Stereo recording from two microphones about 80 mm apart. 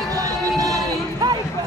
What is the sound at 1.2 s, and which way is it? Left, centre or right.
Music, right.